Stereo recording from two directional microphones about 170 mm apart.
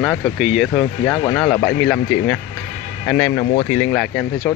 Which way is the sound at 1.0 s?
20° left (ahead or behind).